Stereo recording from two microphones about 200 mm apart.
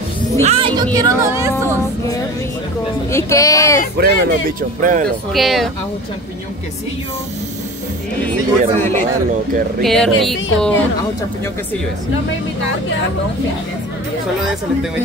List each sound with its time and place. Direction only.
0.4 s speech: 30° right (ahead or behind)
0.9 s speech: 15° right (ahead or behind)
3.1 s speech: 15° left (ahead or behind)
4.0 s speech: 45° right (ahead or behind)
5.3 s speech: centre (ahead or behind)
8.3 s speech: 10° left (ahead or behind)